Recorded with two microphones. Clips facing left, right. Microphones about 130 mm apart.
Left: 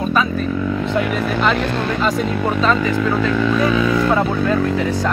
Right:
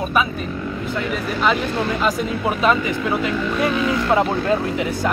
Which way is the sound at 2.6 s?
15° right (ahead or behind).